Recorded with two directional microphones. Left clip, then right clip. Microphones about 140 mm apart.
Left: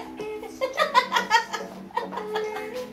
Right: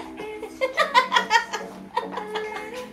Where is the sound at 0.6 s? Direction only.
15° right (ahead or behind).